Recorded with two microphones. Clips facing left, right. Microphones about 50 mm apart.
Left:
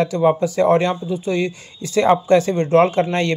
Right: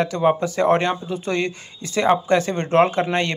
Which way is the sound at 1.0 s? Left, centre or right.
Right.